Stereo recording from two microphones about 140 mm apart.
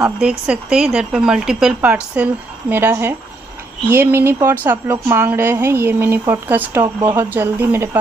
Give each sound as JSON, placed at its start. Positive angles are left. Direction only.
{"t": 0.0, "sound": "a woman's voice", "side_deg": -5}